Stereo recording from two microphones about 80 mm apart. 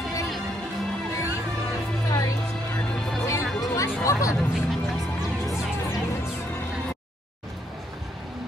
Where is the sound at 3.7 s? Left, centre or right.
Left.